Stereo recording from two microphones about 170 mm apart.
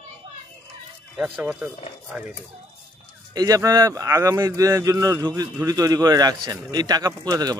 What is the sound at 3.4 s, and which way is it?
A man's voice, 20° right (ahead or behind).